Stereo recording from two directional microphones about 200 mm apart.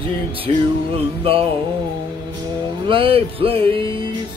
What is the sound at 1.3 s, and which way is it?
Speech, 30° right (ahead or behind).